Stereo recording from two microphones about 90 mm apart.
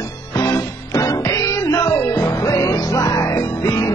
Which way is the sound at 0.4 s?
40° left (ahead or behind).